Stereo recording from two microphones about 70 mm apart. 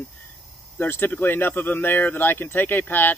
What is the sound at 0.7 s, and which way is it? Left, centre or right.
Speech, left.